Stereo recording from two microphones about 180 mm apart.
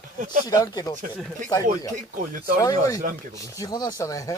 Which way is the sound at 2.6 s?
20° left (ahead or behind).